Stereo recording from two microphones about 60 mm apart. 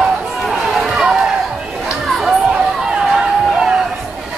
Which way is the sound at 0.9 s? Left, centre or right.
Centre.